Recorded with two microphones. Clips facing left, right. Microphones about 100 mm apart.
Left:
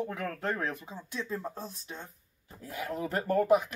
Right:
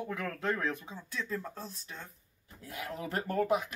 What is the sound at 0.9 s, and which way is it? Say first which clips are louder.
Speech: left 1 dB; 20° left (ahead or behind).